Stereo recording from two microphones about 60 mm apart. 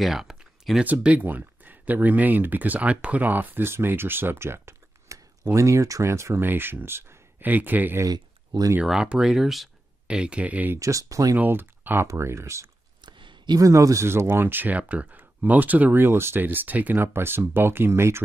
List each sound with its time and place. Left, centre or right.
0.0 s a sound: centre
1.0 s speech: right
6.4 s speech: right
7.4 s speech: right
8.0 s speech: right
8.8 s speech: centre
10.0 s speech: centre
10.8 s speech: right
11.3 s speech: right
12.1 s speech: right
13.6 s speech: right
14.0 s speech: right
14.8 s speech: right